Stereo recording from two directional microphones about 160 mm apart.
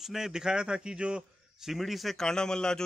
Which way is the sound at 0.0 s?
Centre (ahead or behind).